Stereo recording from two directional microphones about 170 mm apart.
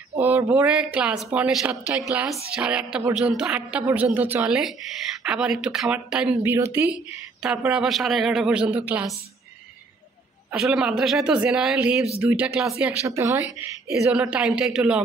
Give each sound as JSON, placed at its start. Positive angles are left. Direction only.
{"t": 0.2, "sound": "a sound", "side_deg": -15}
{"t": 0.7, "sound": "a man's voice", "side_deg": -5}
{"t": 6.4, "sound": "a man's voice", "side_deg": -15}
{"t": 10.6, "sound": "a man's voice", "side_deg": 0}
{"t": 13.0, "sound": "speech", "side_deg": -15}
{"t": 14.1, "sound": "a man's voice", "side_deg": -5}